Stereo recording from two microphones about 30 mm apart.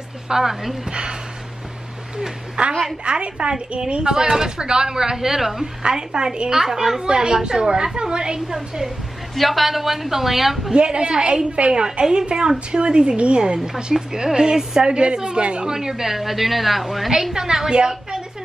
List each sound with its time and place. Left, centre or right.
0.3 s a woman's voice: centre
0.8 s speech: right
2.1 s speech: centre
3.0 s a woman's voice: right; by 5.7 s centre
5.8 s speech: right
6.5 s a woman's voice: centre
7.1 s speech: right
8.5 s a woman's voice: centre
9.3 s a woman's voice: centre
10.8 s a woman's voice: right
13.9 s speech: right
14.9 s a woman's voice: right
15.6 s a woman's voice: centre
17.2 s speech: centre